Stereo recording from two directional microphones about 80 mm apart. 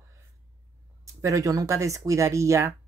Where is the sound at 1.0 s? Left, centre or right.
Right.